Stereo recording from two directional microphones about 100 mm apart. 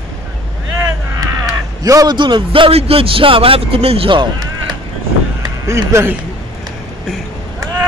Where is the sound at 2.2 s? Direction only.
55° right (ahead or behind).